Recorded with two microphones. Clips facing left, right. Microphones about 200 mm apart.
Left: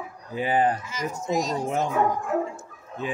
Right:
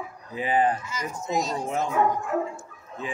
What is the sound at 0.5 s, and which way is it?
Speech, 40° left (ahead or behind).